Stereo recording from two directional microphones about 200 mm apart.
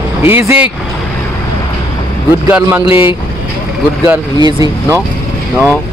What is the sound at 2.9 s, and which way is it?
Speech, 25° left (ahead or behind).